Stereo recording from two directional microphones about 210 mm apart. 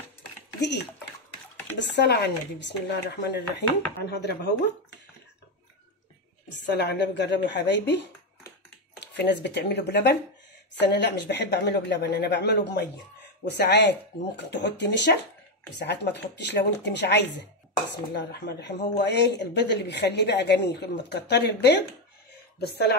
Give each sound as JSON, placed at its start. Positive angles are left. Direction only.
{"t": 0.6, "sound": "speech", "side_deg": 55}
{"t": 6.7, "sound": "speech", "side_deg": 55}